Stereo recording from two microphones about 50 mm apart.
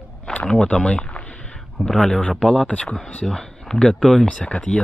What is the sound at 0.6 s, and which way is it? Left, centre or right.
Speech, left.